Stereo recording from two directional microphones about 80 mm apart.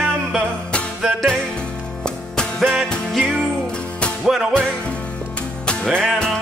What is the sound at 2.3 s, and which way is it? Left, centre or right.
Music, centre.